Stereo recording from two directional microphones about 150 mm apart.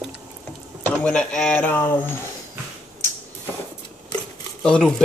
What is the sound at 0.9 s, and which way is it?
Speech, 5° left (ahead or behind).